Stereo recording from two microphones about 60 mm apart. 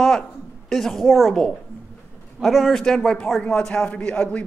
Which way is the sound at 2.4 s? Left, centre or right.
Centre.